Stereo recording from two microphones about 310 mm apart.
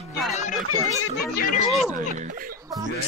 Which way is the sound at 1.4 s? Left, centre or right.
Left.